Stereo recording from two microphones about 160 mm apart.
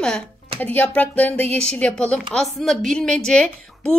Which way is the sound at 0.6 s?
10° left (ahead or behind).